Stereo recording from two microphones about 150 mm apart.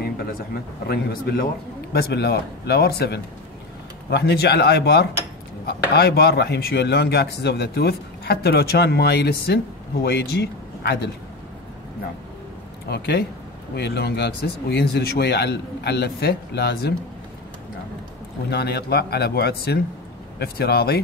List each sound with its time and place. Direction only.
0.8 s speech: 90° left
12.8 s speech: 90° left
18.5 s speech: 90° left